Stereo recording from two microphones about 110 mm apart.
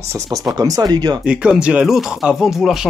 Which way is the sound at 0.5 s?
35° right (ahead or behind).